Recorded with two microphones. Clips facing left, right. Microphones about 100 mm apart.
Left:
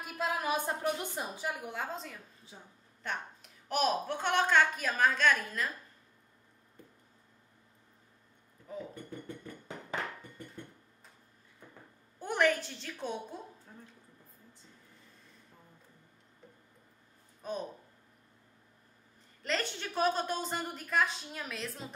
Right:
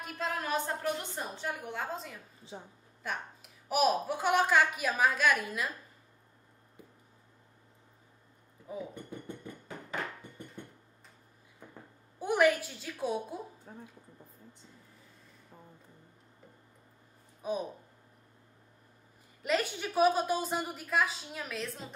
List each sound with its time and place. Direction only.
0.0 s a woman's voice: 10° left (ahead or behind)
2.4 s a woman's voice: 25° right (ahead or behind)
3.0 s a woman's voice: 5° right (ahead or behind)
6.8 s a sound: 10° right (ahead or behind)
8.7 s a woman's voice: 10° right (ahead or behind)
12.2 s a woman's voice: 10° right (ahead or behind)
17.4 s a sound: 10° right (ahead or behind)
19.4 s a woman's voice: 10° right (ahead or behind)